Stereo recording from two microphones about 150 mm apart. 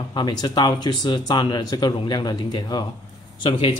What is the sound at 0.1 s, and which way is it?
A man's voice, 30° left (ahead or behind).